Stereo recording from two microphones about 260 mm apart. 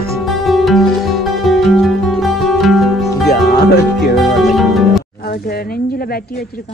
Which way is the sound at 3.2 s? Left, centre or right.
Left.